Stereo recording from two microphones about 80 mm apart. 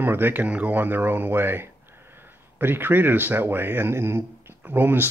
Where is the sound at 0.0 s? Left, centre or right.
Right.